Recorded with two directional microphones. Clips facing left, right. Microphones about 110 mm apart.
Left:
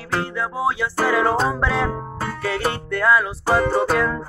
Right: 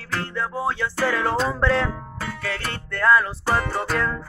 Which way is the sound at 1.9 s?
40° left (ahead or behind).